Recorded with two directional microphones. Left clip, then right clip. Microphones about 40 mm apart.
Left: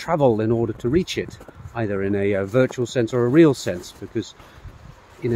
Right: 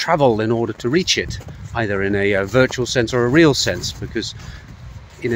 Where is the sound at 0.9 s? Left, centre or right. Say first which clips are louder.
Right 7 dB; left.